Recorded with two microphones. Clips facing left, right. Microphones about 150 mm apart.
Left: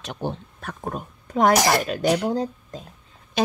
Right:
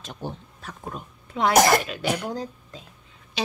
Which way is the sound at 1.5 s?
50° right (ahead or behind).